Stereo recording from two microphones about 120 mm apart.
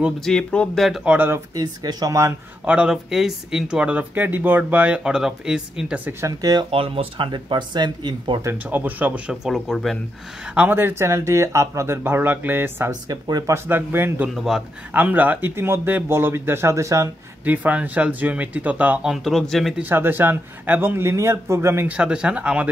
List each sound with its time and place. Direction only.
0.2 s speech: 5° left (ahead or behind)
1.1 s speech: 15° right (ahead or behind)
1.5 s speech: 35° right (ahead or behind)
2.6 s speech: 10° right (ahead or behind)
6.2 s speech: 35° right (ahead or behind)
6.7 s speech: 50° right (ahead or behind)
8.6 s speech: 15° right (ahead or behind); by 9.9 s centre (ahead or behind)
10.5 s speech: 15° right (ahead or behind)
14.3 s speech: centre (ahead or behind)
14.9 s speech: 15° right (ahead or behind)
17.5 s speech: 15° right (ahead or behind)
19.2 s speech: centre (ahead or behind)
19.8 s speech: 15° right (ahead or behind)